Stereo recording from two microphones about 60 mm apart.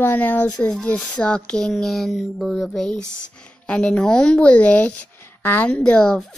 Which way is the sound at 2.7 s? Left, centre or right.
Centre.